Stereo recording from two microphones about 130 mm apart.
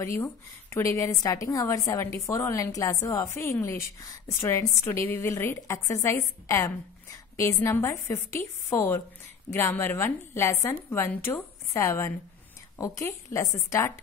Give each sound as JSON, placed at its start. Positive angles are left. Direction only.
{"t": 0.2, "sound": "a woman's voice", "side_deg": 20}